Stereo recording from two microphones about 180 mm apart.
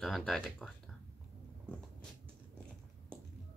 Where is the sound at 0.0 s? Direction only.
Centre (ahead or behind).